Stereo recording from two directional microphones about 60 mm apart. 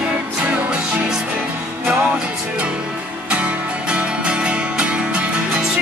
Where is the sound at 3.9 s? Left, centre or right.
Centre.